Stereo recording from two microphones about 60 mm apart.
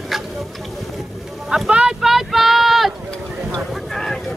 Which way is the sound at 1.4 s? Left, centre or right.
Centre.